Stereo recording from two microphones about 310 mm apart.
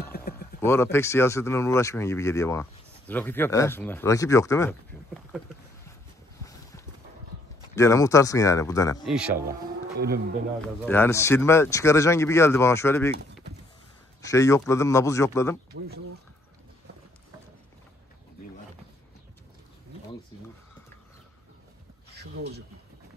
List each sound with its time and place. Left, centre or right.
0.0 s wild animals: left
0.7 s speech: centre
7.7 s speech: centre
9.0 s speech: centre
9.5 s speech: right
10.6 s speech: centre
14.2 s speech: centre
15.7 s a sound: right
22.1 s a sound: right